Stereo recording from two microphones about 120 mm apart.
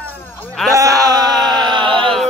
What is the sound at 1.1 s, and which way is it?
Chant, 35° right (ahead or behind).